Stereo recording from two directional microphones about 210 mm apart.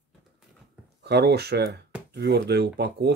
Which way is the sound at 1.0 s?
50° right (ahead or behind).